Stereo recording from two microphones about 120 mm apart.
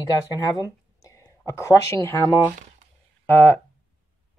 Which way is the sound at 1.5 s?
25° left (ahead or behind).